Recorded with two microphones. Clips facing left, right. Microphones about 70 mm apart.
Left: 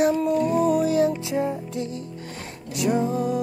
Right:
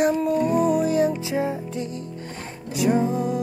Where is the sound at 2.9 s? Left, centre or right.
Centre.